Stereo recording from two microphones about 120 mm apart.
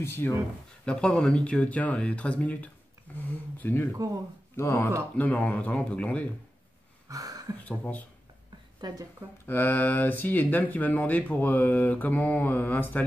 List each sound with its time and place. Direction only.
0.0 s speech: 20° left (ahead or behind)
0.8 s speech: 10° left (ahead or behind)
7.1 s a sound: 30° right (ahead or behind)
7.5 s speech: 15° left (ahead or behind)
8.8 s speech: 35° right (ahead or behind)
9.5 s speech: 15° left (ahead or behind)